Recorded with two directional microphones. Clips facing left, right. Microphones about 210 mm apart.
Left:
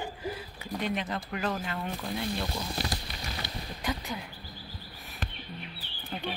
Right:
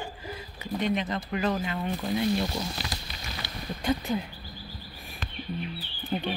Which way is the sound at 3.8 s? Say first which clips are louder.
Right 7 dB; 30° right (ahead or behind).